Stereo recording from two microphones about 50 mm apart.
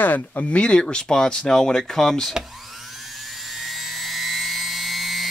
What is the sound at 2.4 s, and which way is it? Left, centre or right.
Helicopter, centre.